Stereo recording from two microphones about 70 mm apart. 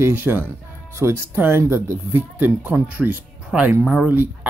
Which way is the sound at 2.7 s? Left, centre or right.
Right.